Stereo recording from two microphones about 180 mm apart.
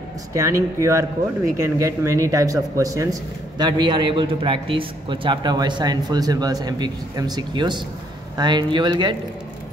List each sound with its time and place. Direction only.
0.3 s speech: 15° right (ahead or behind)